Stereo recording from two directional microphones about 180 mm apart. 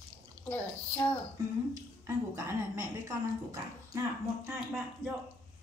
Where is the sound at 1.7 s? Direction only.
15° right (ahead or behind).